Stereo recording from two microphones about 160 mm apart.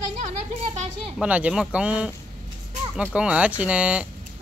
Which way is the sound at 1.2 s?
10° right (ahead or behind).